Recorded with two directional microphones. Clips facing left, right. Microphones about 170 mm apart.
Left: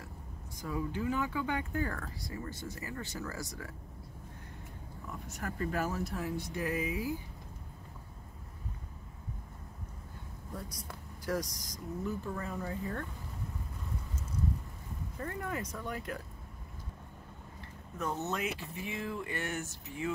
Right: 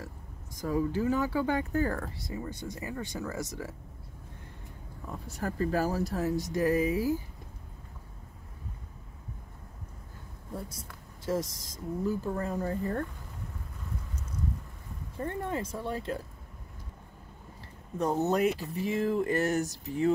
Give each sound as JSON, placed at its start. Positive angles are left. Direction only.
{"t": 0.6, "sound": "speech", "side_deg": -40}
{"t": 5.2, "sound": "speech", "side_deg": -35}
{"t": 10.5, "sound": "speech", "side_deg": -25}
{"t": 15.1, "sound": "speech", "side_deg": -30}
{"t": 17.9, "sound": "speech", "side_deg": -35}